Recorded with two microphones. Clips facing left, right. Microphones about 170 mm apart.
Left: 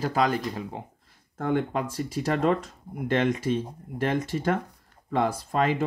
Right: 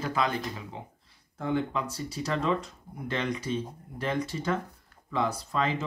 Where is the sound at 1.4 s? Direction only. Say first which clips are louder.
Left 3 dB; 55° left (ahead or behind).